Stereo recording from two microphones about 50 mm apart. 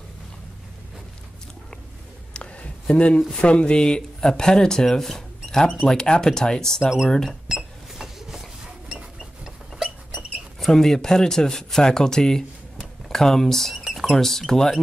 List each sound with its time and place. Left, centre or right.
2.3 s a sound: left
3.2 s speech: centre
3.4 s speech: left
6.8 s speech: centre
7.2 s cash register: centre
10.1 s speech: centre